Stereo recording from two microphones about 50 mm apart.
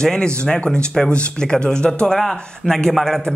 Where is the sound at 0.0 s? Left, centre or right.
Centre.